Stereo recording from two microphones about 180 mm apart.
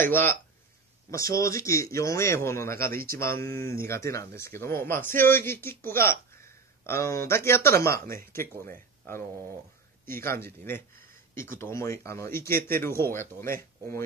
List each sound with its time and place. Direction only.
0.0 s speech: 10° left (ahead or behind)
2.8 s speech: 55° right (ahead or behind)
3.2 s speech: 15° left (ahead or behind)
8.0 s speech: 55° right (ahead or behind)
8.6 s speech: 15° left (ahead or behind)
10.2 s speech: 15° left (ahead or behind)